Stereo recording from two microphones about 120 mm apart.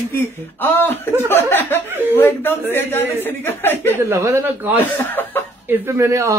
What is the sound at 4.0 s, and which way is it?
Speech, 20° right (ahead or behind).